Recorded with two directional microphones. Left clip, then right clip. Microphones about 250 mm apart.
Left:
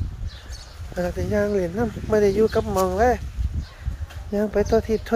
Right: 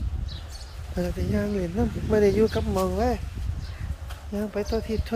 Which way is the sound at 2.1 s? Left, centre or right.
Centre.